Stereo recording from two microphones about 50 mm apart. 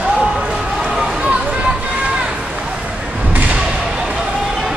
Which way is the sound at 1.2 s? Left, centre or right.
Right.